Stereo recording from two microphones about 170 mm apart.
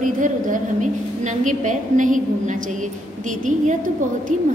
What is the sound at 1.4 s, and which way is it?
Speech, 45° right (ahead or behind).